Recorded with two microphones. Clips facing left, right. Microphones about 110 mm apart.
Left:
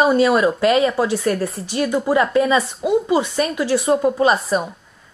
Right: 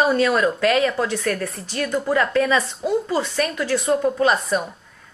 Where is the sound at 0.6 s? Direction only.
25° left (ahead or behind).